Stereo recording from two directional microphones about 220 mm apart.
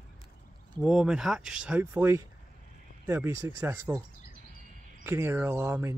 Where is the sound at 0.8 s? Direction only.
5° right (ahead or behind).